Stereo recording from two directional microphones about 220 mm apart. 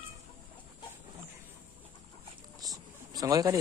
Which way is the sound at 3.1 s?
15° right (ahead or behind).